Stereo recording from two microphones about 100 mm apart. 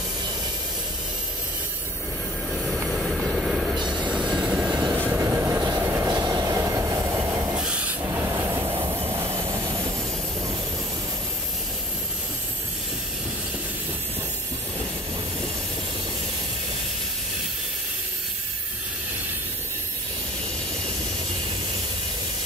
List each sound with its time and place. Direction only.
2.5 s train: 5° left (ahead or behind)
4.9 s train: 20° right (ahead or behind)
5.6 s train: 35° right (ahead or behind)
7.5 s a sound: 10° right (ahead or behind)
8.0 s train: 25° right (ahead or behind)